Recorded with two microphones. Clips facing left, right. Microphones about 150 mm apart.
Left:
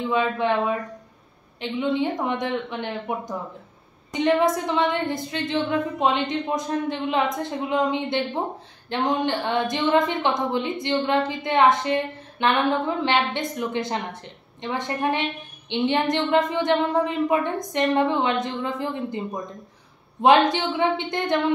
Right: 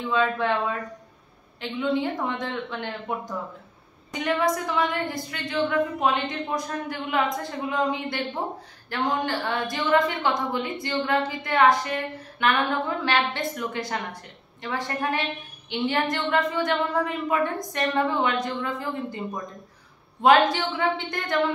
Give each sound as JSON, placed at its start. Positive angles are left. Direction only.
{"t": 0.1, "sound": "a woman's voice", "side_deg": 20}